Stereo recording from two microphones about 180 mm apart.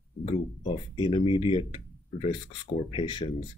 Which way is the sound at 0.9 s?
25° left (ahead or behind).